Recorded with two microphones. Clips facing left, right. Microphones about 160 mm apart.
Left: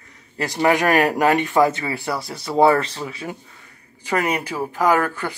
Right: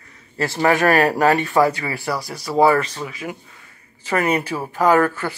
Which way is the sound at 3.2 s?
15° left (ahead or behind).